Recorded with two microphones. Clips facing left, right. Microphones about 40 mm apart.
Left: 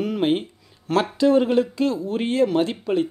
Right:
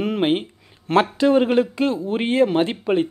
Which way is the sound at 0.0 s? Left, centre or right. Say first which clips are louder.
Right 1 dB; right.